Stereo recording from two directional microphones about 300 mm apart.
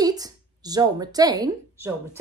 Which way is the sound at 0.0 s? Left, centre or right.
Centre.